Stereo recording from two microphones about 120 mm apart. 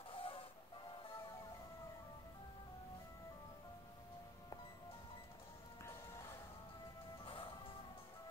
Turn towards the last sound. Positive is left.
turn(degrees=50)  # may be behind; listen again after turning